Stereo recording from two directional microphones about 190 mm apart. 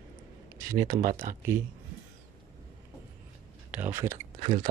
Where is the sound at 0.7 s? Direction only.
45° right (ahead or behind).